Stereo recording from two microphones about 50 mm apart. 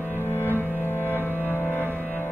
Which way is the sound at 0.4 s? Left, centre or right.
Left.